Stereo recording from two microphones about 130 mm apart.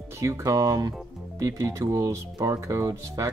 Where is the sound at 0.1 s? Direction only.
20° right (ahead or behind).